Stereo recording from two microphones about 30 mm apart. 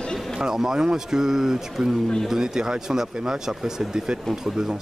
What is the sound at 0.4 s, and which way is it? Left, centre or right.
Speech, centre.